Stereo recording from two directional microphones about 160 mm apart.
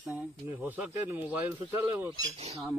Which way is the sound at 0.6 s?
10° right (ahead or behind).